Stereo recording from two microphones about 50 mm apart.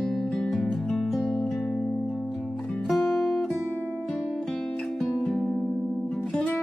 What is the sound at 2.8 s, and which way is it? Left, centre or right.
Music, centre.